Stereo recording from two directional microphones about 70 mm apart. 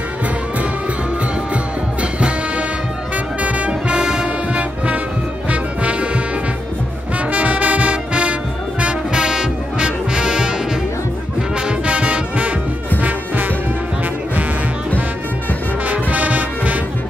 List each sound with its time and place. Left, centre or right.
1.5 s music: centre
7.2 s brass instrument: centre
11.6 s brass instrument: centre
15.9 s music: right